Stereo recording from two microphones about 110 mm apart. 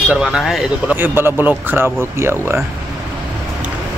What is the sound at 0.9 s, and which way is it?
Speech, 20° right (ahead or behind).